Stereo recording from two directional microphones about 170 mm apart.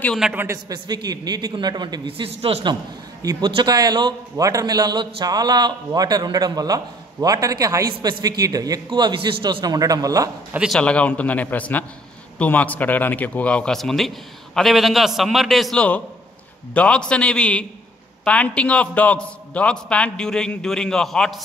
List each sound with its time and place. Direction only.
0.0 s a man's voice: 5° left (ahead or behind)
0.3 s a man's voice: 15° right (ahead or behind)
10.5 s a man's voice: 5° right (ahead or behind)
10.8 s a man's voice: 5° left (ahead or behind)